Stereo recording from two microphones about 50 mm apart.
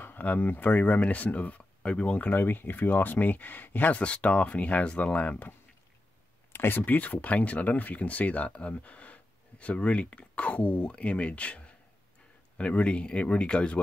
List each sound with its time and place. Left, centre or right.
0.0 s speech: left
2.3 s speech: left
4.0 s speech: left
6.5 s speech: left
7.0 s speech: left